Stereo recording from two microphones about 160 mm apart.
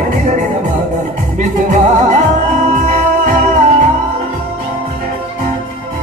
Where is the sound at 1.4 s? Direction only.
50° right (ahead or behind).